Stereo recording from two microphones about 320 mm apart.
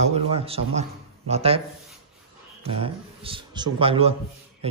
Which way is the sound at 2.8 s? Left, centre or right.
Centre.